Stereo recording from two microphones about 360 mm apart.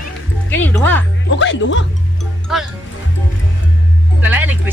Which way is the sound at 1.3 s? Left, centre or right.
Left.